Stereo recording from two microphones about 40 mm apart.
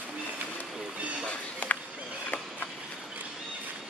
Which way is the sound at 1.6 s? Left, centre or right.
Left.